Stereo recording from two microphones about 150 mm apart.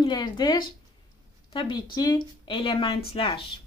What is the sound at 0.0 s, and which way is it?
A woman's voice, 30° left (ahead or behind).